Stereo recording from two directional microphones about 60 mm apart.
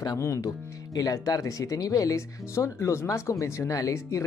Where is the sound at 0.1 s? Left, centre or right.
Left.